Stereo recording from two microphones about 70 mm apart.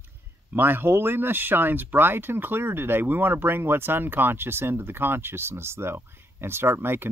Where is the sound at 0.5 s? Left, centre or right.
Right.